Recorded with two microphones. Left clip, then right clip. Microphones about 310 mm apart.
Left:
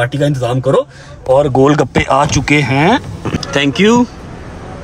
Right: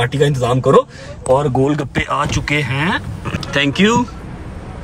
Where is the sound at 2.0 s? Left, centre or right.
Centre.